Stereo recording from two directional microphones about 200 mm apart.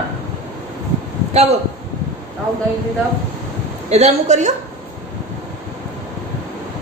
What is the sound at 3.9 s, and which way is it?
Speech, 35° right (ahead or behind).